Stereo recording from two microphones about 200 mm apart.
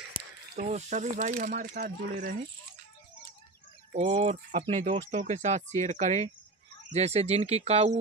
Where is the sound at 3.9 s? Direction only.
35° right (ahead or behind).